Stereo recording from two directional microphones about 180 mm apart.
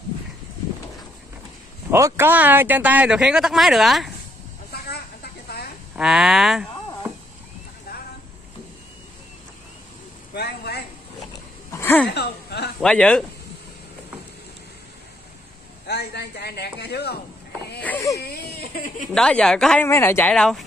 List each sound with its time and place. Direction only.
1.9 s speech: 15° right (ahead or behind)
4.8 s snake: 60° left (ahead or behind)
5.9 s speech: 5° right (ahead or behind)
10.3 s a sound: 65° left (ahead or behind)
11.7 s a sound: 10° left (ahead or behind)
12.1 s speech: 65° left (ahead or behind)
12.8 s speech: 5° left (ahead or behind)
15.9 s a man's voice: 65° left (ahead or behind)
17.8 s baby cry: 15° left (ahead or behind)
18.2 s baby cry: 60° left (ahead or behind)
19.1 s speech: 5° left (ahead or behind)